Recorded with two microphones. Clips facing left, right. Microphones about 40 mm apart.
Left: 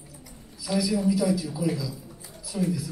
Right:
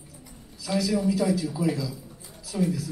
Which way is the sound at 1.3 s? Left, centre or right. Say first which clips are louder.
Right 1 dB; centre.